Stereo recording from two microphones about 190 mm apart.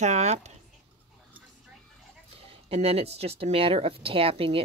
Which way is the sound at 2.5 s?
30° right (ahead or behind).